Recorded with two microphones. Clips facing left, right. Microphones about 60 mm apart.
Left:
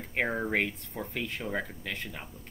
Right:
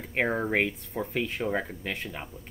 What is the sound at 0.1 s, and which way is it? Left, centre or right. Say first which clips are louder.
Speech: right 3 dB; centre.